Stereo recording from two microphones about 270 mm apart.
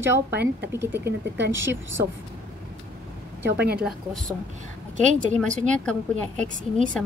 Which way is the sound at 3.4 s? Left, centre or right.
Right.